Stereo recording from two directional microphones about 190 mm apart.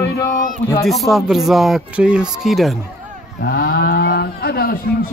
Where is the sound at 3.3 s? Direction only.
60° left (ahead or behind).